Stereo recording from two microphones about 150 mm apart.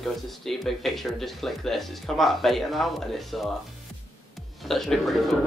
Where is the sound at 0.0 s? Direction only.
Centre (ahead or behind).